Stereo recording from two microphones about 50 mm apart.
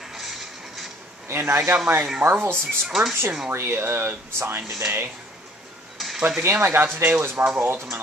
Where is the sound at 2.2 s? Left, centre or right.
Centre.